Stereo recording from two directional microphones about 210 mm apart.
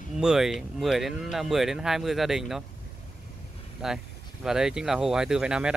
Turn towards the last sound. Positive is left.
turn(degrees=-5)  # may be behind; listen again after turning